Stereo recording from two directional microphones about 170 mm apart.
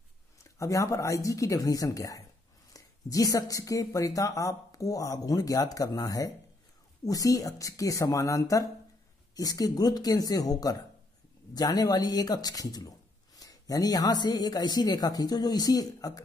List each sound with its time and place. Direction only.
0.4 s a man's voice: 20° left (ahead or behind)